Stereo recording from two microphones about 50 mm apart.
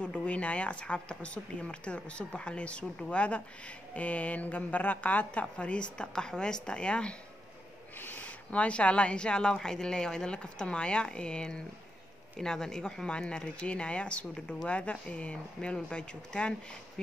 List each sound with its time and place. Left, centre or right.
0.0 s speech: left
8.0 s speech: left